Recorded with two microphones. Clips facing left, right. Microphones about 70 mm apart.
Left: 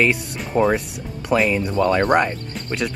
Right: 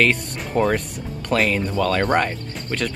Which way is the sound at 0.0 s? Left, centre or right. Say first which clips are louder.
Even; centre.